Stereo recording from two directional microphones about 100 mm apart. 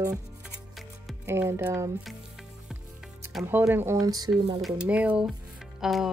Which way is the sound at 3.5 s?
20° right (ahead or behind).